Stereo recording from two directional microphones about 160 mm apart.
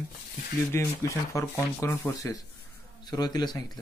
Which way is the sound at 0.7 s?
20° left (ahead or behind).